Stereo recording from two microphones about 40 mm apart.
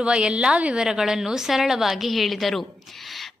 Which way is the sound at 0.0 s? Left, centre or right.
Right.